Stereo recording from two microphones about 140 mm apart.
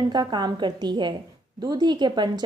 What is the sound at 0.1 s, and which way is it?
A woman's voice, 30° right (ahead or behind).